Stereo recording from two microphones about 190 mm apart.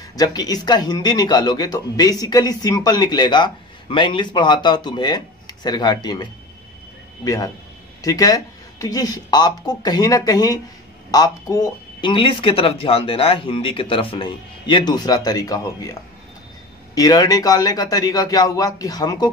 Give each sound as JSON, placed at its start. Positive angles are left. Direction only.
{"t": 0.1, "sound": "speech", "side_deg": 20}
{"t": 7.2, "sound": "speech", "side_deg": 15}